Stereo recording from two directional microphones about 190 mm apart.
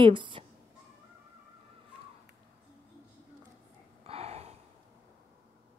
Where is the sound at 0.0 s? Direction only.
25° right (ahead or behind).